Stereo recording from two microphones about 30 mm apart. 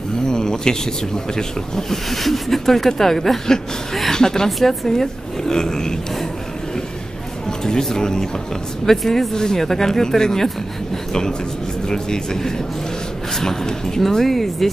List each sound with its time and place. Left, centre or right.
0.3 s speech: left
2.0 s speech: centre
4.5 s speech: centre
4.8 s speech: centre
7.6 s speech: centre
8.8 s speech: centre
9.3 s speech: left
11.9 s speech: left
14.0 s speech: centre